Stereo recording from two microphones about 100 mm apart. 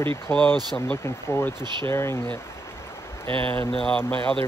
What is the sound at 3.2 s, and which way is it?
Speech, 60° right (ahead or behind).